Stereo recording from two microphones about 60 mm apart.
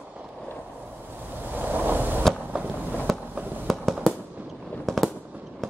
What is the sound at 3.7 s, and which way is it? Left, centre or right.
Fireworks, centre.